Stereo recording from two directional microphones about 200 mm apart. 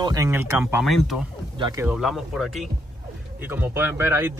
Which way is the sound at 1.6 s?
15° right (ahead or behind).